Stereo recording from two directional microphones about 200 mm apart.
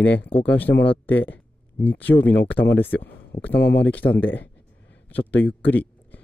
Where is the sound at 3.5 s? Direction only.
55° left (ahead or behind).